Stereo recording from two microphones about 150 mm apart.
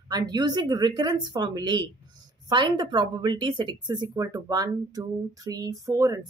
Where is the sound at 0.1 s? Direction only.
25° right (ahead or behind).